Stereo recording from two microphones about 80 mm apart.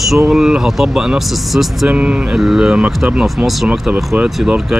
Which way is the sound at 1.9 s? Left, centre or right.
Centre.